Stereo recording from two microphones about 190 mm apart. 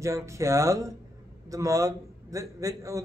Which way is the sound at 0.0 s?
15° right (ahead or behind).